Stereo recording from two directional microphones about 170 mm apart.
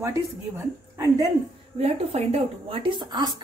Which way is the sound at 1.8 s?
35° right (ahead or behind).